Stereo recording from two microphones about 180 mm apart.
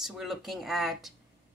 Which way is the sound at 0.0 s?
Centre (ahead or behind).